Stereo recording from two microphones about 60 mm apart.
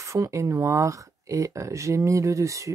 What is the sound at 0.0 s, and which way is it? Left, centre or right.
Speech, right.